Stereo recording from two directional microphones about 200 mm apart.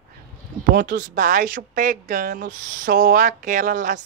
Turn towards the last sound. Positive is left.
turn(degrees=-40)  # may be behind; listen again after turning